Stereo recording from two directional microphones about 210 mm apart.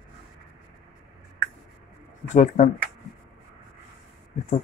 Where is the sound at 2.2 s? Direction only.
35° left (ahead or behind).